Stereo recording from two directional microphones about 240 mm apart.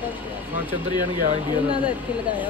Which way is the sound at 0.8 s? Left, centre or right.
Centre.